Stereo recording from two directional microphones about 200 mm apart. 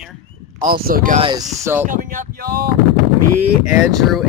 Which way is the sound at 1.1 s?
25° right (ahead or behind).